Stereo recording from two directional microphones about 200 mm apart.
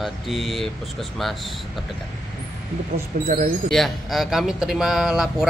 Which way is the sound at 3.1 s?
40° right (ahead or behind).